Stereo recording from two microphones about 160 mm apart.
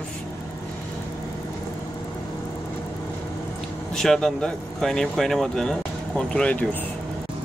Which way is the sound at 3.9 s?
5° left (ahead or behind).